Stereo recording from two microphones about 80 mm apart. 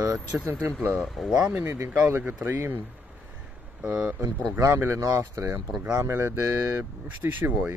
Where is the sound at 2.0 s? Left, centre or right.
Right.